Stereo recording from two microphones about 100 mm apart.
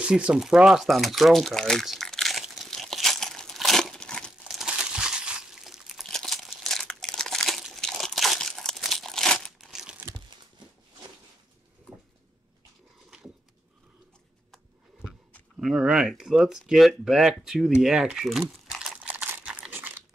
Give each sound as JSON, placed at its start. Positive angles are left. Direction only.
{"t": 0.0, "sound": "crumpling", "side_deg": -10}
{"t": 4.5, "sound": "crumpling", "side_deg": -5}
{"t": 15.6, "sound": "a sound", "side_deg": -5}
{"t": 19.4, "sound": "crumpling", "side_deg": -10}
{"t": 19.7, "sound": "crunch", "side_deg": -20}